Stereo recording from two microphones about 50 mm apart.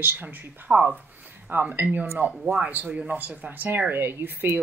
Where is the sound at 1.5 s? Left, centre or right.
Right.